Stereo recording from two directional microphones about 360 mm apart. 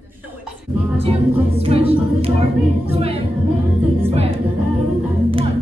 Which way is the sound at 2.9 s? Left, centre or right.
Centre.